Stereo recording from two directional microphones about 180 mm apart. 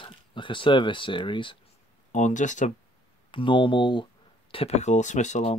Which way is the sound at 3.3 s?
30° left (ahead or behind).